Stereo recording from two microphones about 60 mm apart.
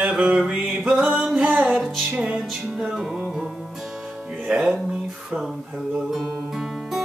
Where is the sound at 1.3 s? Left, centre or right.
Right.